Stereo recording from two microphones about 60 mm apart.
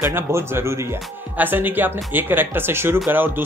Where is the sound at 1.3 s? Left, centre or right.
Right.